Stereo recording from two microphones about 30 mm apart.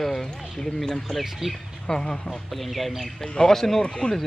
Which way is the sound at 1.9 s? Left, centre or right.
Left.